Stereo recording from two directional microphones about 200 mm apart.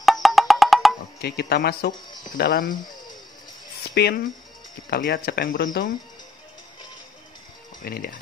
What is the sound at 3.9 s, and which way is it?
A man's voice, 55° left (ahead or behind).